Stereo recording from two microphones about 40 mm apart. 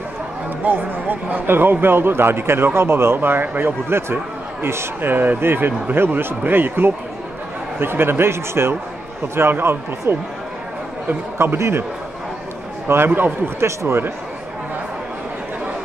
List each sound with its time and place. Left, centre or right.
0.7 s a man's voice: right
7.8 s speech: right
11.3 s speech: right
12.8 s a man's voice: right